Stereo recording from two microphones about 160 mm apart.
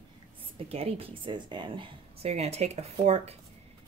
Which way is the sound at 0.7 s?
40° right (ahead or behind).